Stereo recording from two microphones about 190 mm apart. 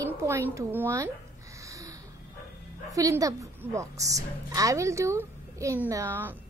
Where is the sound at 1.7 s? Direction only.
15° right (ahead or behind).